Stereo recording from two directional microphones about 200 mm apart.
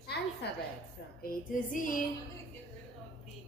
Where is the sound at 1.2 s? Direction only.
40° left (ahead or behind).